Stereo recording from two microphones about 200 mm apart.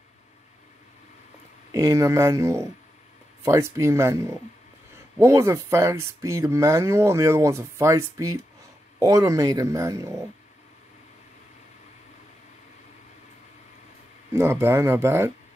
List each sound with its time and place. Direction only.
1.7 s speech: 15° right (ahead or behind)
14.3 s speech: 10° right (ahead or behind)